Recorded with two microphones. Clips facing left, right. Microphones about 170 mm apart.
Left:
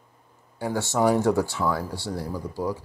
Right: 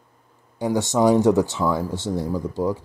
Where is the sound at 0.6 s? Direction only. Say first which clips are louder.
Right 4 dB; 15° right (ahead or behind).